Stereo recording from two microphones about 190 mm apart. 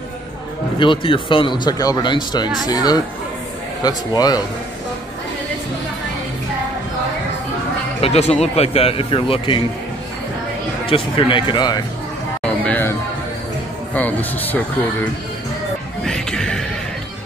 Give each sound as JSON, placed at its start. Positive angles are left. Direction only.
{"t": 0.7, "sound": "speech", "side_deg": 25}
{"t": 8.0, "sound": "speech", "side_deg": 35}
{"t": 10.9, "sound": "speech", "side_deg": 25}
{"t": 12.6, "sound": "music", "side_deg": 10}
{"t": 13.9, "sound": "speech", "side_deg": 10}
{"t": 16.1, "sound": "music", "side_deg": 5}